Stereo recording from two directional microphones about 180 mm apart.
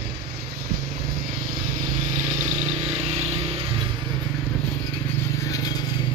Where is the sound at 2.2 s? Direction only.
40° right (ahead or behind).